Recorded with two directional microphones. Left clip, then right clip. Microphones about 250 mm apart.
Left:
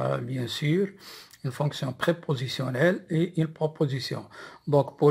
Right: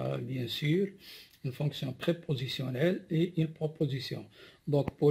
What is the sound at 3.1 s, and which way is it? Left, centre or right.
Speech, left.